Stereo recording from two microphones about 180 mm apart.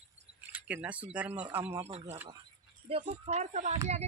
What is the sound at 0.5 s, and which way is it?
Speech, 10° right (ahead or behind).